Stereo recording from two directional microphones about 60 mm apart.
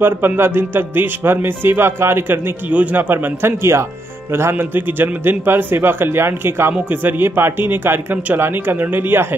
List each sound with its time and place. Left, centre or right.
0.0 s speech: right
2.7 s speech: right
3.0 s speech: right
4.7 s speech: right